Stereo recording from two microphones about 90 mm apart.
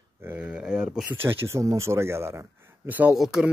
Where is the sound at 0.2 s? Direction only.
20° right (ahead or behind).